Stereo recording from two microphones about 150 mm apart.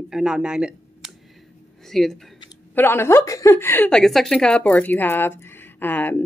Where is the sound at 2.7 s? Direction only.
15° left (ahead or behind).